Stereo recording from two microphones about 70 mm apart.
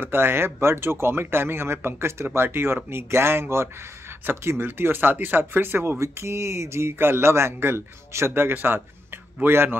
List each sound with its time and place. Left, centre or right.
0.0 s speech: right